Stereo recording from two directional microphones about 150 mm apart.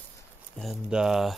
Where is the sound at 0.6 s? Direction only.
5° right (ahead or behind).